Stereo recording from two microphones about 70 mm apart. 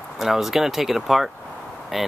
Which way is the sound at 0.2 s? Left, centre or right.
Centre.